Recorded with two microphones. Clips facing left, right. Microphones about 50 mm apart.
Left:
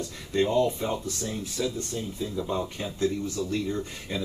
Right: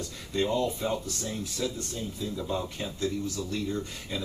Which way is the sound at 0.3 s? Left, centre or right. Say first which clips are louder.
Left 4 dB; left.